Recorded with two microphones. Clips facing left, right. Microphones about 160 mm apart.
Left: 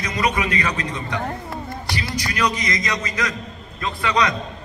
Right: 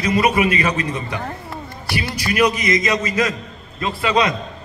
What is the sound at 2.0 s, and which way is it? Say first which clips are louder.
Speech: right 6 dB; 25° right (ahead or behind).